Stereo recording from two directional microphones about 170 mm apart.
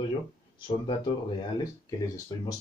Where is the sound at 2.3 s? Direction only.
20° left (ahead or behind).